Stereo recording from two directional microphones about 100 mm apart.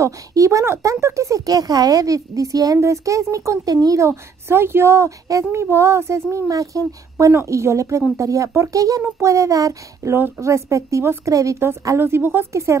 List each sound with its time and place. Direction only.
0.0 s speech: 30° right (ahead or behind)
10.1 s a woman's voice: 20° right (ahead or behind)